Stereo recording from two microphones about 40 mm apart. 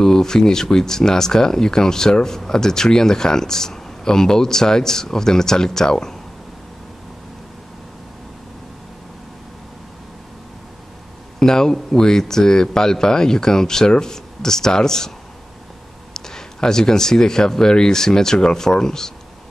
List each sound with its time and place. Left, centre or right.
0.0 s speech: centre
11.3 s speech: centre